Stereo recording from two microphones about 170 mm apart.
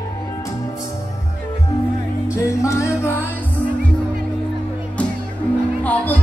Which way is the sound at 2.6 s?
15° left (ahead or behind).